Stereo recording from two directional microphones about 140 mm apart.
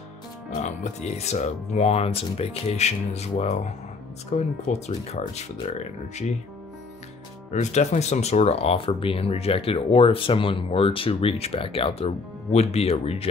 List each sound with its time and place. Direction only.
0.6 s speech: 55° left (ahead or behind)
7.5 s speech: 55° left (ahead or behind)